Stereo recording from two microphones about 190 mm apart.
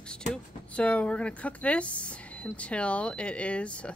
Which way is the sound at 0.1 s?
5° left (ahead or behind).